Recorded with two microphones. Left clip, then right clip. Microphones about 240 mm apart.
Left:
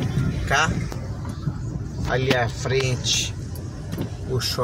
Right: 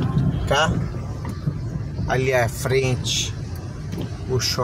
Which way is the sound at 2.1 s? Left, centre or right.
Right.